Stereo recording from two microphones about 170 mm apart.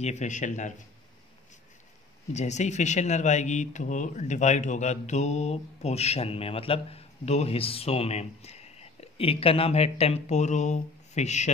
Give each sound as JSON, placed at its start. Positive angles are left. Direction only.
{"t": 0.0, "sound": "speech", "side_deg": 45}
{"t": 2.3, "sound": "speech", "side_deg": 45}